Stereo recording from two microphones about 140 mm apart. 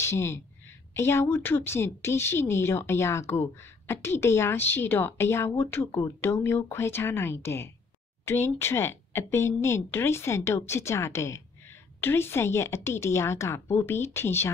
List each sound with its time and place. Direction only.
0.0 s a woman's voice: 20° left (ahead or behind)